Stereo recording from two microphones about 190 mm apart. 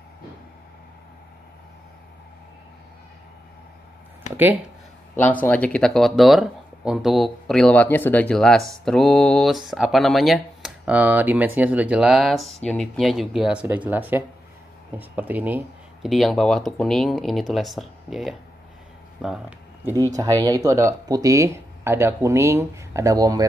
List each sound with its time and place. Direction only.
5.1 s speech: 10° left (ahead or behind)
20.2 s speech: 20° right (ahead or behind)